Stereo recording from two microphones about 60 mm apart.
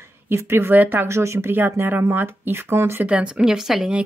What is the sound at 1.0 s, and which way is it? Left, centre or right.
Speech, right.